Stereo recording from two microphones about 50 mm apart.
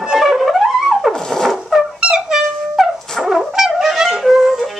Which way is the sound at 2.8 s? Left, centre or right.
Centre.